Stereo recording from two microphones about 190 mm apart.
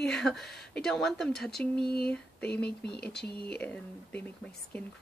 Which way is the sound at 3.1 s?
60° left (ahead or behind).